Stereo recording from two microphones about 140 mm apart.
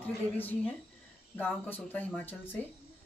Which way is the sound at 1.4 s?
15° left (ahead or behind).